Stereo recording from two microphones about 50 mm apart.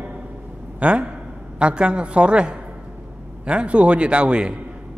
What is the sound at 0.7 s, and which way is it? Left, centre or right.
A man's voice, right.